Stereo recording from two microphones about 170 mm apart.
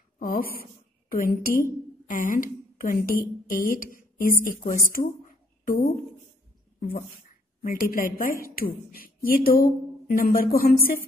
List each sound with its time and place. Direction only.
0.2 s a woman's voice: 60° left (ahead or behind)
4.9 s a sound: 55° left (ahead or behind)
7.6 s speech: 55° left (ahead or behind)